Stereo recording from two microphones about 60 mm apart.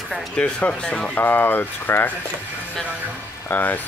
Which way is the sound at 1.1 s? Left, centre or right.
Left.